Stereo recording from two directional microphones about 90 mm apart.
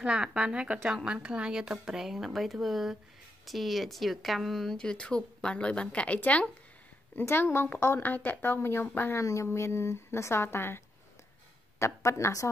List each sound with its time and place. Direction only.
0.0 s speech: 10° right (ahead or behind); by 6.5 s 15° left (ahead or behind)
7.2 s a woman's voice: 25° left (ahead or behind)
11.8 s a woman's voice: 35° left (ahead or behind)